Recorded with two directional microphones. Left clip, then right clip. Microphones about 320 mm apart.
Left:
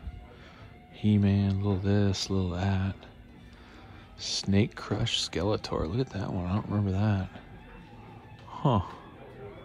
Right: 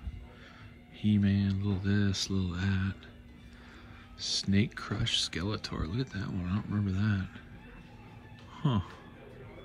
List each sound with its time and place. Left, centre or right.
1.0 s speech: centre
4.2 s speech: centre
8.5 s a sound: centre